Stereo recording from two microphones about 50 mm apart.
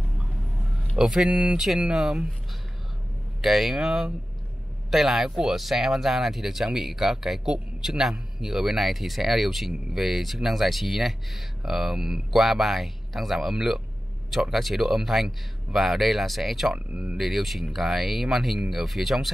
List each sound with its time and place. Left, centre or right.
0.2 s vehicle: centre
1.0 s speech: centre
1.3 s speech: right
1.8 s speech: centre
3.3 s speech: centre
16.7 s speech: right
17.2 s speech: centre